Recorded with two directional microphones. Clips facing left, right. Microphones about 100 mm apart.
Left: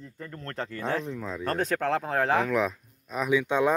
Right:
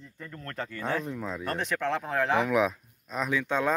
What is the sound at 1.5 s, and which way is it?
Speech, 40° left (ahead or behind).